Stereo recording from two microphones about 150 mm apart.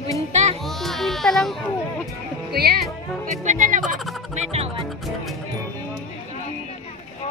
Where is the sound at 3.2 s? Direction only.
55° right (ahead or behind).